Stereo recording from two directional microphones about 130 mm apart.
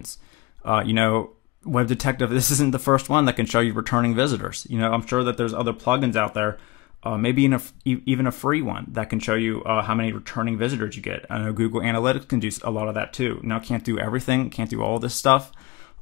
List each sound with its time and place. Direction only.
0.7 s speech: 30° left (ahead or behind)
4.9 s speech: 10° right (ahead or behind)
7.3 s speech: 15° left (ahead or behind)
9.3 s speech: 10° right (ahead or behind)
11.2 s speech: 5° left (ahead or behind)
11.5 s speech: 20° left (ahead or behind)
12.7 s speech: 5° right (ahead or behind)
13.7 s speech: 25° left (ahead or behind)